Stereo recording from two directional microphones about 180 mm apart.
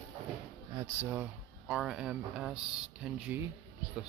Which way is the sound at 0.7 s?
15° right (ahead or behind).